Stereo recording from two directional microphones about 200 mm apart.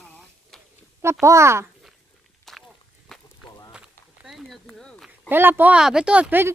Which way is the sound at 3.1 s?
Centre (ahead or behind).